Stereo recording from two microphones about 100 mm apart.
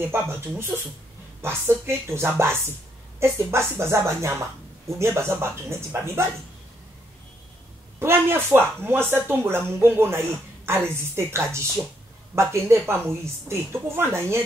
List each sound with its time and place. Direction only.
0.0 s a woman's voice: 20° right (ahead or behind)
8.0 s a woman's voice: 25° right (ahead or behind)